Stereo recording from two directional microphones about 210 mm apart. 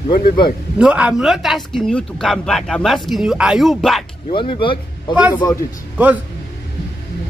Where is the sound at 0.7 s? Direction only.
5° right (ahead or behind).